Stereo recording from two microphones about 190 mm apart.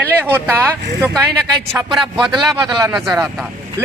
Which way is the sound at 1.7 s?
Centre (ahead or behind).